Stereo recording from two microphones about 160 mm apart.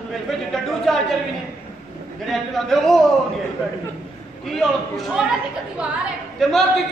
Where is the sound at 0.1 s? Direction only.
Centre (ahead or behind).